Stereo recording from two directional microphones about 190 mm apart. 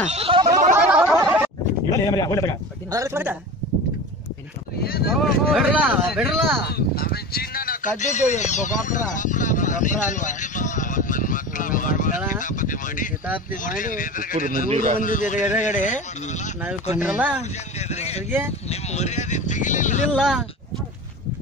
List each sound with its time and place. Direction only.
0.0 s speech: 35° right (ahead or behind)
0.7 s a sound: 5° right (ahead or behind)
1.9 s a man's voice: 20° left (ahead or behind)
2.9 s speech: 15° right (ahead or behind)
4.8 s speech: 50° left (ahead or behind)
5.1 s speech: 5° right (ahead or behind)
6.7 s speech: 55° left (ahead or behind)
16.9 s speech: 10° right (ahead or behind)
17.4 s speech: 35° left (ahead or behind)
20.1 s speech: centre (ahead or behind)